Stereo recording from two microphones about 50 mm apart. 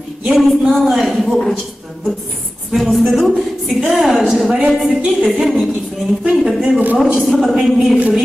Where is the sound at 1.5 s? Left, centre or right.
Centre.